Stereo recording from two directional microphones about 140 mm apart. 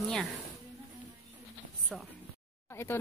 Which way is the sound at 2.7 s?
15° left (ahead or behind).